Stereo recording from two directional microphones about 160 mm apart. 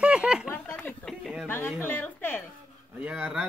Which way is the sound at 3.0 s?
5° right (ahead or behind).